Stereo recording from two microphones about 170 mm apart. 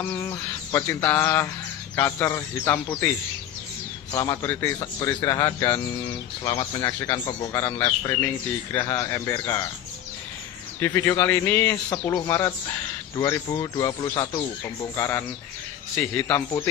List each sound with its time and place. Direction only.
0.1 s bird: 20° left (ahead or behind)
4.1 s bird: 20° left (ahead or behind)
4.7 s speech: 20° left (ahead or behind)
8.7 s bird: 15° left (ahead or behind)
10.8 s bird: 15° left (ahead or behind)
12.0 s speech: 25° left (ahead or behind)
12.3 s bird: 15° left (ahead or behind)
13.2 s speech: 20° left (ahead or behind)
16.0 s bird: 10° left (ahead or behind)